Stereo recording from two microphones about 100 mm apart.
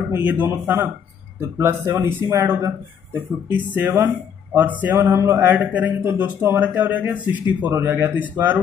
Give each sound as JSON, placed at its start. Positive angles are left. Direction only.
{"t": 0.1, "sound": "speech", "side_deg": -20}